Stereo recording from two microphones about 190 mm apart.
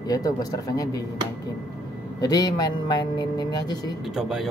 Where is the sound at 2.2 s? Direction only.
20° left (ahead or behind).